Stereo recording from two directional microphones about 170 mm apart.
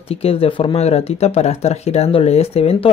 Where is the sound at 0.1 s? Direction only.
35° left (ahead or behind).